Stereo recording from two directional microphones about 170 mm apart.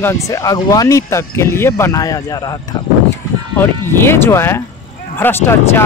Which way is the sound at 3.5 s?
15° left (ahead or behind).